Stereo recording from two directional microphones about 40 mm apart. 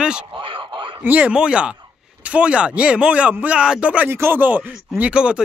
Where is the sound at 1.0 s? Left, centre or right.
Right.